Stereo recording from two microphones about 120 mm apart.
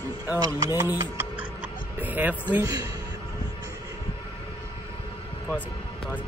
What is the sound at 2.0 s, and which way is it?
Speech, 15° right (ahead or behind).